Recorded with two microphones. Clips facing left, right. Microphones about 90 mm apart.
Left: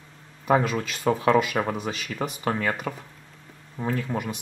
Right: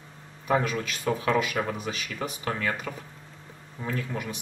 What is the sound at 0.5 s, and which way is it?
Speech, 30° left (ahead or behind).